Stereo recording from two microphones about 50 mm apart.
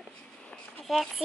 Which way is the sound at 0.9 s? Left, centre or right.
Centre.